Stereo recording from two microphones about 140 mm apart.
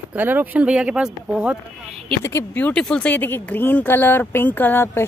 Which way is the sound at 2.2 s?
15° left (ahead or behind).